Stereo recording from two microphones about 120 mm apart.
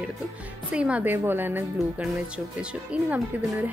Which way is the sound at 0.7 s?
10° right (ahead or behind).